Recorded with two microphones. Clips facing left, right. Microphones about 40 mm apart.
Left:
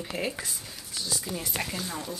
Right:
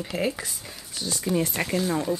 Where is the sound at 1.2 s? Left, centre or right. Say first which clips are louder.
Right 8 dB; right.